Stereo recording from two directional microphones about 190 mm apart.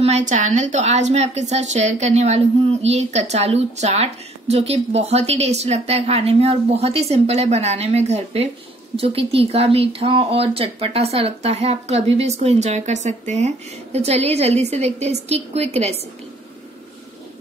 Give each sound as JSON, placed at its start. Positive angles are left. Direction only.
{"t": 0.0, "sound": "a woman's voice", "side_deg": -40}